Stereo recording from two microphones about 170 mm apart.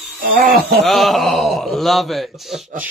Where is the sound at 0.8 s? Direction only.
Centre (ahead or behind).